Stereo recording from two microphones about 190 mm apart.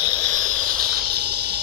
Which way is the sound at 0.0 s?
35° right (ahead or behind).